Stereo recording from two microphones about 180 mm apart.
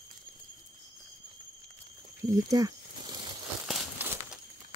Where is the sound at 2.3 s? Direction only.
20° right (ahead or behind).